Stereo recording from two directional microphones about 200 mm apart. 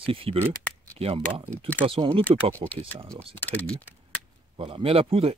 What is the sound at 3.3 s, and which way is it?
Speech, 10° left (ahead or behind).